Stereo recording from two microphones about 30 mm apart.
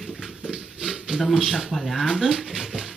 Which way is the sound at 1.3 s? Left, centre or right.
Centre.